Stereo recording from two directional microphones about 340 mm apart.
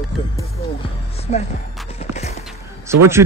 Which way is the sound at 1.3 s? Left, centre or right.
Centre.